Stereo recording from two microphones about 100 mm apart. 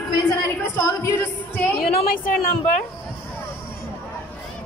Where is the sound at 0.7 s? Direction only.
25° left (ahead or behind).